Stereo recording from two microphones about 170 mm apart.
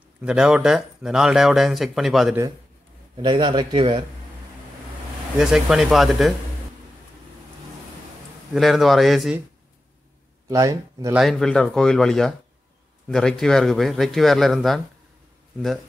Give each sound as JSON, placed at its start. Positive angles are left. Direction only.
{"t": 0.2, "sound": "speech", "side_deg": -5}
{"t": 3.2, "sound": "speech", "side_deg": -30}
{"t": 5.4, "sound": "speech", "side_deg": 0}
{"t": 8.5, "sound": "speech", "side_deg": 0}
{"t": 10.5, "sound": "speech", "side_deg": -20}
{"t": 11.1, "sound": "speech", "side_deg": 0}